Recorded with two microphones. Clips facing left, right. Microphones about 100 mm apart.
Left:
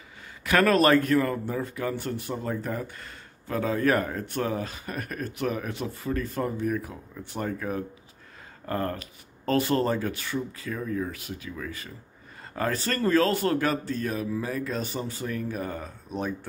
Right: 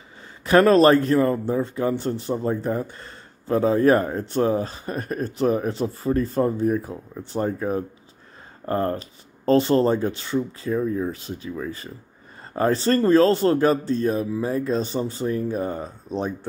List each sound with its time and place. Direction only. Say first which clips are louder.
0.4 s a man's voice: right 6 dB; 30° right (ahead or behind)